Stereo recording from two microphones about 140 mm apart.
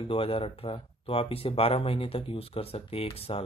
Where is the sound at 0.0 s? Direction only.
40° left (ahead or behind).